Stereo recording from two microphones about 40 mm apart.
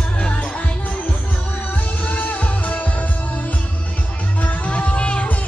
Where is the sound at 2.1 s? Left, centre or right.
Left.